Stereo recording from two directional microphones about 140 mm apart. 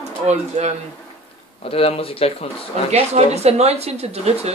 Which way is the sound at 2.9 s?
50° right (ahead or behind).